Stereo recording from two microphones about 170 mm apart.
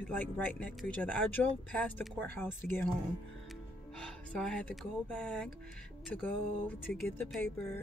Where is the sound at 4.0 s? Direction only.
5° left (ahead or behind).